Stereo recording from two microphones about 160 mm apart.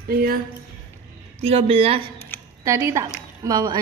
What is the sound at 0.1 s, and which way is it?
Speech, 70° right (ahead or behind).